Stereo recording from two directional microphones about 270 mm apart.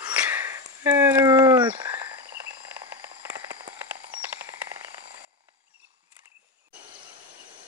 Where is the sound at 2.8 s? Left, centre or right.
Centre.